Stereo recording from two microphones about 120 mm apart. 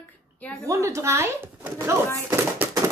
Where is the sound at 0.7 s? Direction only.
25° right (ahead or behind).